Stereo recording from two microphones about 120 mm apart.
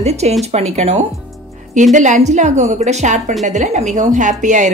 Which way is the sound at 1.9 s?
90° right.